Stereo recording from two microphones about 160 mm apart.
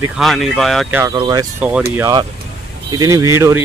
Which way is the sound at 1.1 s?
25° right (ahead or behind).